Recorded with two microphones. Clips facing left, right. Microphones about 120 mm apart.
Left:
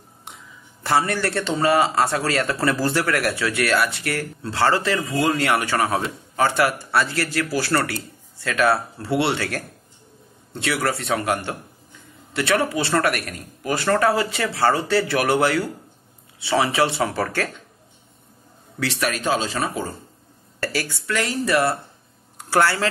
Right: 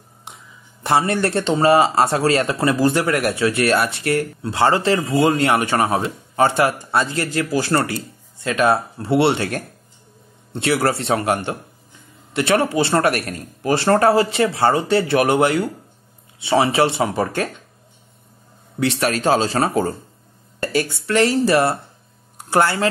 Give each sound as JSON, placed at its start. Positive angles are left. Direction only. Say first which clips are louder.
{"t": 0.8, "sound": "speech", "louder": "right 3 dB", "side_deg": -20}
{"t": 12.4, "sound": "speech", "louder": "right 4 dB", "side_deg": -25}
{"t": 18.8, "sound": "speech", "louder": "right 5 dB", "side_deg": -25}
{"t": 20.6, "sound": "speech", "louder": "right 5 dB", "side_deg": -25}